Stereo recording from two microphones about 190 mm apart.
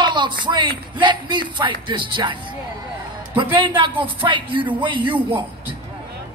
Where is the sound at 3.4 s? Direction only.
25° right (ahead or behind).